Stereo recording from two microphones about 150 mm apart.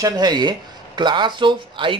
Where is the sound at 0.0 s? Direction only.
25° right (ahead or behind).